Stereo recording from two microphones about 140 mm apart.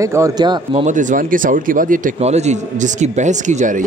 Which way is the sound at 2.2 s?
55° right (ahead or behind).